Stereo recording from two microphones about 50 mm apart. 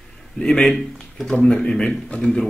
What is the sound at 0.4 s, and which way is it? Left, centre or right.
A man's voice, centre.